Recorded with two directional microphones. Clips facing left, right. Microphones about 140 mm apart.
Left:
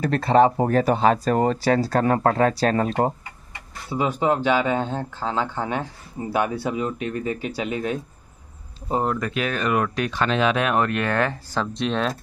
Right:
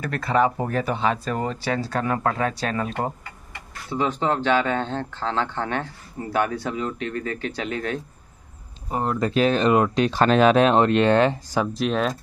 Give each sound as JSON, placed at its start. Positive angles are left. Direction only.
{"t": 0.0, "sound": "speech", "side_deg": 30}
{"t": 3.9, "sound": "speech", "side_deg": 10}
{"t": 9.2, "sound": "speech", "side_deg": -30}
{"t": 10.2, "sound": "speech", "side_deg": -40}
{"t": 11.6, "sound": "speech", "side_deg": -5}